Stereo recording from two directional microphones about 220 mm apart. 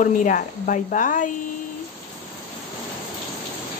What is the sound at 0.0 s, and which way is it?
Speech, 35° left (ahead or behind).